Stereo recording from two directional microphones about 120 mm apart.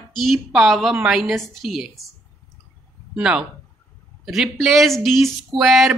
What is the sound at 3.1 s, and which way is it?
Speech, 5° right (ahead or behind).